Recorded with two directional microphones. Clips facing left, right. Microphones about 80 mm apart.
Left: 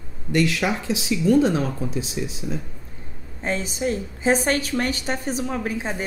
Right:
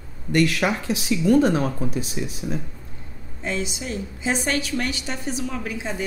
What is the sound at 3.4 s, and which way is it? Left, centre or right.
A woman's voice, left.